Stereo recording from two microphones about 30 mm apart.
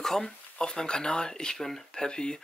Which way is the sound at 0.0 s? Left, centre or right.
Centre.